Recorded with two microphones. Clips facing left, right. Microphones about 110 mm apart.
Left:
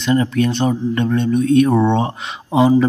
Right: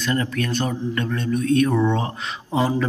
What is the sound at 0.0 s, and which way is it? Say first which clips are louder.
Speech: left 7 dB; 20° left (ahead or behind).